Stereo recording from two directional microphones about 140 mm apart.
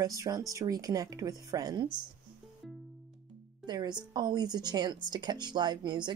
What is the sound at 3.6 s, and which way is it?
Speech, 30° right (ahead or behind).